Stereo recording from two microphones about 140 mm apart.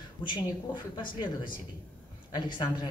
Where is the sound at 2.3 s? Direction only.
35° left (ahead or behind).